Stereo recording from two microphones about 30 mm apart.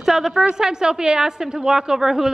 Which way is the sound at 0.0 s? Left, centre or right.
Centre.